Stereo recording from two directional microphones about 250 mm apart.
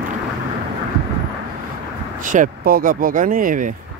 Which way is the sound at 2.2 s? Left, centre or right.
Right.